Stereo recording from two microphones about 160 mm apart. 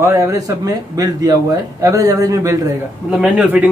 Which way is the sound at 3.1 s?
10° right (ahead or behind).